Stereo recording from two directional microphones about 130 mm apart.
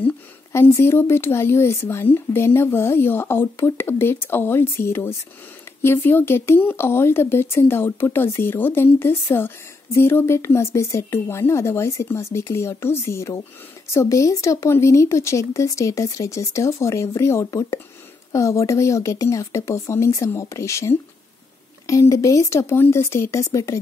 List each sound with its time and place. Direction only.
0.0 s a woman's voice: 20° left (ahead or behind)